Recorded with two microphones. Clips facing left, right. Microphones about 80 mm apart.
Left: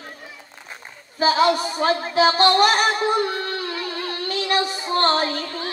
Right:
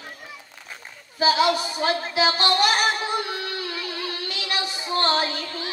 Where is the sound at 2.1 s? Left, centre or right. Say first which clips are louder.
Left 8 dB; left.